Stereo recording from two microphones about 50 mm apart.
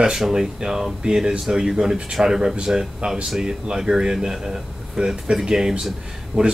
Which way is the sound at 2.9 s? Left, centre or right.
Right.